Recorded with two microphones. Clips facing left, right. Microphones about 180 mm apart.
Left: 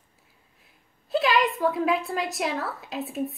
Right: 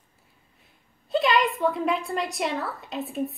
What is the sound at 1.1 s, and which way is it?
A woman's voice, centre (ahead or behind).